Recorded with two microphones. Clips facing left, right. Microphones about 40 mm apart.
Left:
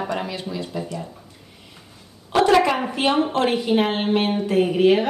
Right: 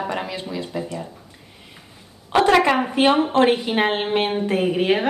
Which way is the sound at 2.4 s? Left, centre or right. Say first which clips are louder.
Even; right.